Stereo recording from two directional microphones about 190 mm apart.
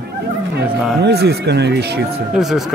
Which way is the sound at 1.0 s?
60° right (ahead or behind).